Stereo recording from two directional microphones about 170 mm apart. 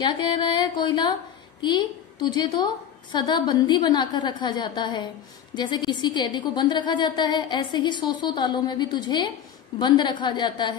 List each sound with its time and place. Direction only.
0.0 s a woman's voice: 25° left (ahead or behind)